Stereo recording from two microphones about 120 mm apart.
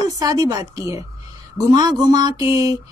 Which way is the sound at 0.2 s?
30° right (ahead or behind).